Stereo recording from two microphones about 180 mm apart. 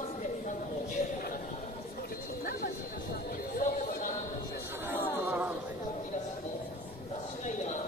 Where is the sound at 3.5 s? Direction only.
50° left (ahead or behind).